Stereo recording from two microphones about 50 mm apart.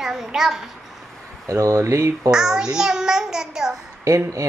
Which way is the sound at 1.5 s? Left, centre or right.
Right.